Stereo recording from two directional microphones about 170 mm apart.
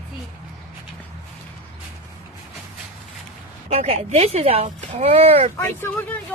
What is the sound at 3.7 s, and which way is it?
Speech, 40° right (ahead or behind).